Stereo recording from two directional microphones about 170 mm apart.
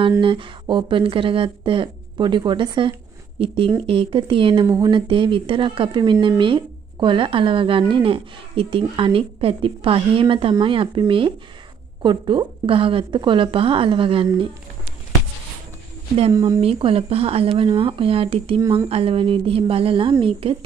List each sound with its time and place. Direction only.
0.2 s a woman's voice: 30° right (ahead or behind)
16.3 s a woman's voice: 20° right (ahead or behind)
16.6 s speech: 35° right (ahead or behind)